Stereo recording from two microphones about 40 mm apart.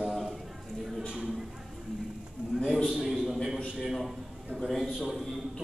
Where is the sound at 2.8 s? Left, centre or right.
Centre.